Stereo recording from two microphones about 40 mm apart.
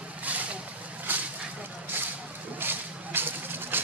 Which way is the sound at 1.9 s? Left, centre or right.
Right.